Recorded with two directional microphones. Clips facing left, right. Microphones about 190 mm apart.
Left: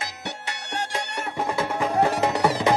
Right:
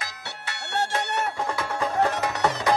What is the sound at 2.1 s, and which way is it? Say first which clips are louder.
Music: left 5 dB; 30° left (ahead or behind).